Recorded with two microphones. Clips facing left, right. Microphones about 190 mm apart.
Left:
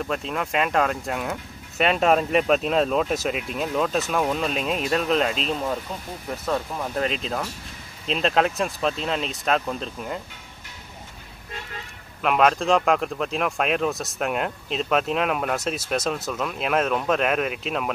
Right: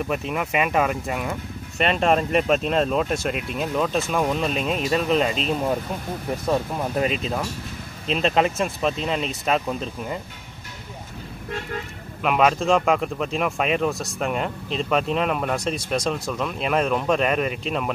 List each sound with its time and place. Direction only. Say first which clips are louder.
0.3 s speech: even; 5° right (ahead or behind)
6.4 s speech: right 2 dB; 15° right (ahead or behind)
7.1 s speech: right 2 dB; 5° right (ahead or behind)
12.2 s speech: even; centre (ahead or behind)